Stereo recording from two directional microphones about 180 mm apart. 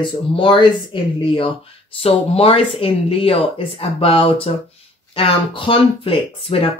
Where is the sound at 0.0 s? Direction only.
25° left (ahead or behind).